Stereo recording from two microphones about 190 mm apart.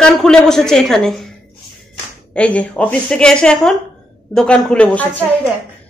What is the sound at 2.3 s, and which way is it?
A woman's voice, 5° left (ahead or behind).